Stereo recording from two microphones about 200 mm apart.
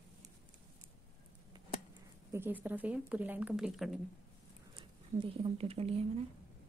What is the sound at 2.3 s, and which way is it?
A woman's voice, 10° right (ahead or behind).